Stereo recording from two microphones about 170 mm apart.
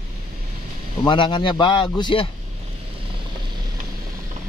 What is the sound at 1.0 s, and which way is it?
Speech, 30° left (ahead or behind).